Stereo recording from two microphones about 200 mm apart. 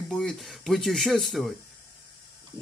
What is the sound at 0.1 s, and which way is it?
Speech, centre (ahead or behind).